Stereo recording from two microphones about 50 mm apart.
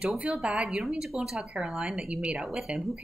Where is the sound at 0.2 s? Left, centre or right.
Right.